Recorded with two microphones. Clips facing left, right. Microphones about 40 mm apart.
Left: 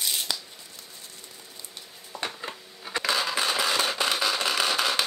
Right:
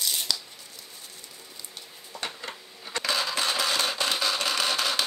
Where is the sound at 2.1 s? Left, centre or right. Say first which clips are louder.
Left 2 dB; centre.